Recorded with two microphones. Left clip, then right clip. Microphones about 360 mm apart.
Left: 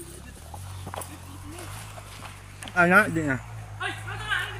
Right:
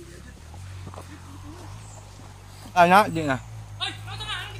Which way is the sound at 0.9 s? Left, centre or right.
Left.